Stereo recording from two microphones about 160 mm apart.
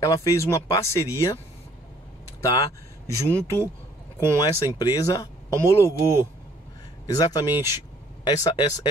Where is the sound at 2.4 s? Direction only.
20° left (ahead or behind).